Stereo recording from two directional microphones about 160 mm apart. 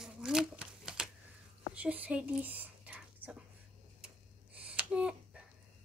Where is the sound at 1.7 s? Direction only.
10° right (ahead or behind).